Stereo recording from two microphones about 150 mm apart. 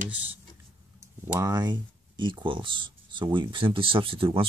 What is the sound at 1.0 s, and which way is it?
Speech, 25° right (ahead or behind).